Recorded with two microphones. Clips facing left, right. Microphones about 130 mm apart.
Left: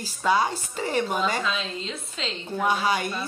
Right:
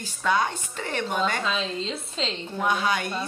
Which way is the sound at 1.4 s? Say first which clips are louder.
Right 2 dB; 30° right (ahead or behind).